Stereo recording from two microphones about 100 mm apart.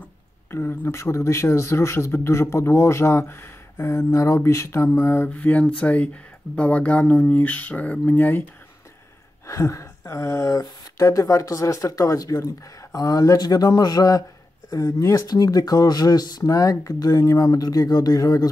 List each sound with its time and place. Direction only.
0.5 s speech: 25° left (ahead or behind)
5.3 s speech: 15° left (ahead or behind)
9.5 s speech: 30° left (ahead or behind)